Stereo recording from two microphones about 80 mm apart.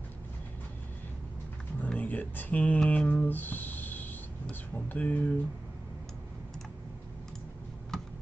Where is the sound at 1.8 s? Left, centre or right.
Left.